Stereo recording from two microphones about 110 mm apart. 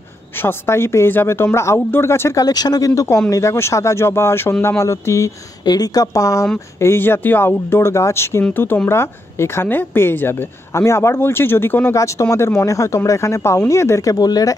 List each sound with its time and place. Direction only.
0.4 s speech: 20° left (ahead or behind)
2.4 s speech: 35° left (ahead or behind)